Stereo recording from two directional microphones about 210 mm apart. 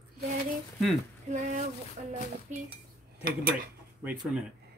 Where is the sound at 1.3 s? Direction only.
35° right (ahead or behind).